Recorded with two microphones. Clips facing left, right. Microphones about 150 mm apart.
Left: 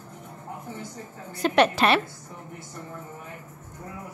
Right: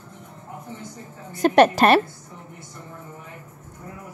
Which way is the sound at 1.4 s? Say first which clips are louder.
Right 5 dB; 45° right (ahead or behind).